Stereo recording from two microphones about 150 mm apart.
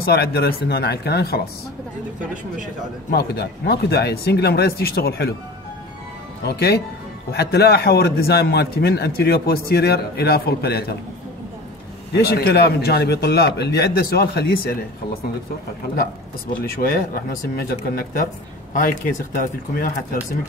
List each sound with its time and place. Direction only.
0.0 s a man's voice: 90° left
3.1 s a man's voice: 90° left
6.4 s a man's voice: 90° left
12.1 s a man's voice: 90° left
16.7 s speech: 75° left (ahead or behind)